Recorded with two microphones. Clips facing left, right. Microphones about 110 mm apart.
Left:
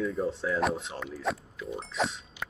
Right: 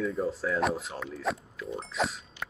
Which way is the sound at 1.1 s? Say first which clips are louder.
Even; centre (ahead or behind).